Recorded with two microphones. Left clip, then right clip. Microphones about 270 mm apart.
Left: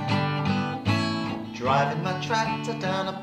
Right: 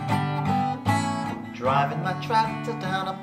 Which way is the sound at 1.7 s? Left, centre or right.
Centre.